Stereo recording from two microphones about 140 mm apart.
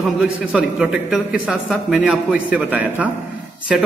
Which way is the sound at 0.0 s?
5° right (ahead or behind).